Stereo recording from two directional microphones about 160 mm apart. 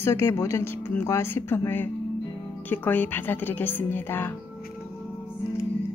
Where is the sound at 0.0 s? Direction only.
15° left (ahead or behind).